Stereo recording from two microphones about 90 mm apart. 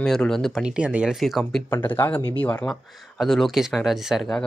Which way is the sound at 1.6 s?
25° left (ahead or behind).